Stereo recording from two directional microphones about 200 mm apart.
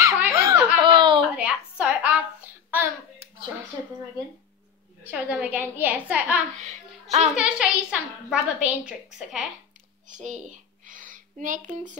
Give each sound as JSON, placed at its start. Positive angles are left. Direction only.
{"t": 0.0, "sound": "giggle", "side_deg": -15}
{"t": 1.3, "sound": "a sound", "side_deg": -5}
{"t": 5.0, "sound": "a woman's voice", "side_deg": -5}
{"t": 6.6, "sound": "child singing", "side_deg": -35}
{"t": 7.3, "sound": "a woman's voice", "side_deg": -5}
{"t": 10.0, "sound": "a sound", "side_deg": -40}